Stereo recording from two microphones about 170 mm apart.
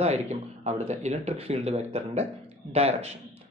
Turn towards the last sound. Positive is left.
turn(degrees=-35)  # may be behind; listen again after turning